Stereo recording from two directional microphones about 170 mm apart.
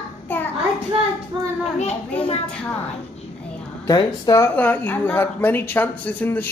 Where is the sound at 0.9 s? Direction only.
30° right (ahead or behind).